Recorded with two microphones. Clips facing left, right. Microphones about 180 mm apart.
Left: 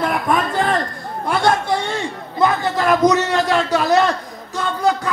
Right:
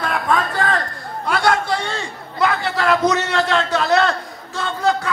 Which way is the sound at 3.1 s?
15° left (ahead or behind).